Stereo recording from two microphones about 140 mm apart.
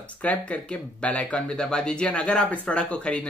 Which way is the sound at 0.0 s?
10° left (ahead or behind).